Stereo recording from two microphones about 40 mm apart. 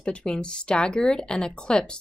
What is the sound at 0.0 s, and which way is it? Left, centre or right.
Speech, left.